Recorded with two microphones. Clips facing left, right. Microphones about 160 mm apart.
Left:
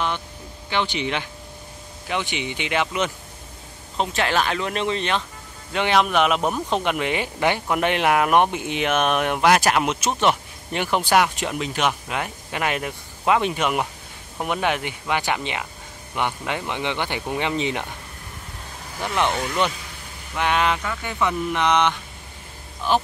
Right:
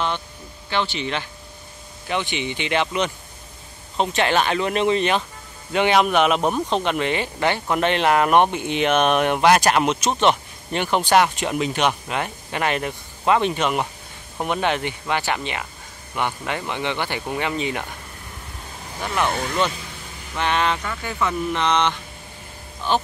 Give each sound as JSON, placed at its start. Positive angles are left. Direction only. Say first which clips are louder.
{"t": 0.7, "sound": "a man's voice", "louder": "even", "side_deg": 15}
{"t": 20.3, "sound": "speech", "louder": "even", "side_deg": 10}